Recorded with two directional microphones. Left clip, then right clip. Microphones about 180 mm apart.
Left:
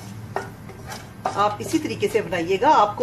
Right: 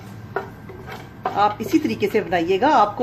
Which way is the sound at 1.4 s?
55° right (ahead or behind).